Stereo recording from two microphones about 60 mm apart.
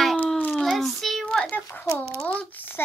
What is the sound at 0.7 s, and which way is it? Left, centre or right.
Child singing, centre.